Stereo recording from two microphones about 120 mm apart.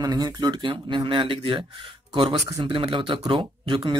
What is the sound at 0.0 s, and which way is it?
Speech, 35° right (ahead or behind).